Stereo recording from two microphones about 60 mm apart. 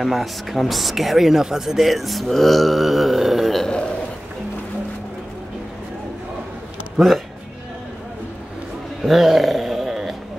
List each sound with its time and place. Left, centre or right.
0.0 s speech: centre
3.6 s a sound: centre
9.0 s music: centre